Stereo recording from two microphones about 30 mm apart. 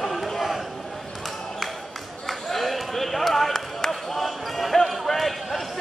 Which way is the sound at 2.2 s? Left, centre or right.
Centre.